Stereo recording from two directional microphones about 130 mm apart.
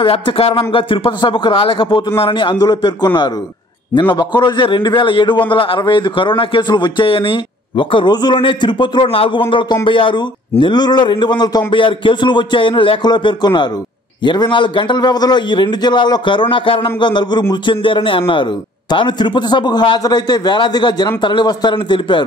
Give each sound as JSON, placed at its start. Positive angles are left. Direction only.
{"t": 0.0, "sound": "a man's voice", "side_deg": 50}